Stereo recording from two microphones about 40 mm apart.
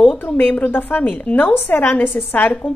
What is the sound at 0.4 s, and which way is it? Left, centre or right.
Speech, left.